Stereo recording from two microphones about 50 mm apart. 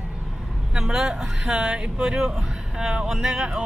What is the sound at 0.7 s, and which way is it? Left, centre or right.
Speech, centre.